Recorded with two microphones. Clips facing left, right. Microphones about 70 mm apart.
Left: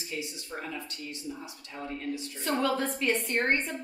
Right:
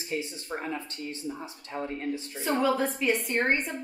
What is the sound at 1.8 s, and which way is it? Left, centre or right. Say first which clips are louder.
Speech: right 3 dB; right.